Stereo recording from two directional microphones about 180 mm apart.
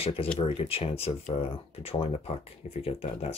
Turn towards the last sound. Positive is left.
turn(degrees=35)  # may be behind; listen again after turning